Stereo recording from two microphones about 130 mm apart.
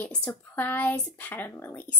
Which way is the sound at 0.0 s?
10° left (ahead or behind).